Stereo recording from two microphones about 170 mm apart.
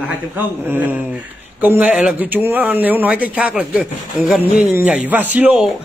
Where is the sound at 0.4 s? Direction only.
10° right (ahead or behind).